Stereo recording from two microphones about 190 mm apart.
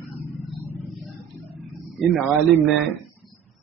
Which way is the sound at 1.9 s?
Centre (ahead or behind).